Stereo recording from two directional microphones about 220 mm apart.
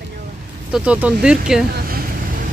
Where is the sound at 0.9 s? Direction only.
5° right (ahead or behind).